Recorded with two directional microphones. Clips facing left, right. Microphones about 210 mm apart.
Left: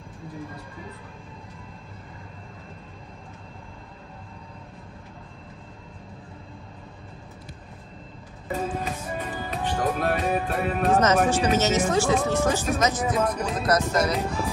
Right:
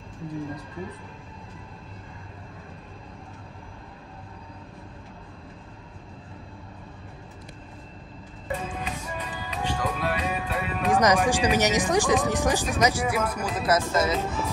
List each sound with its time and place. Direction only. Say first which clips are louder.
8.5 s music: left 3 dB; 45° left (ahead or behind)
10.9 s speech: even; 15° right (ahead or behind)